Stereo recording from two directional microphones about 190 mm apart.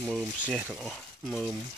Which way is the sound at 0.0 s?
Centre (ahead or behind).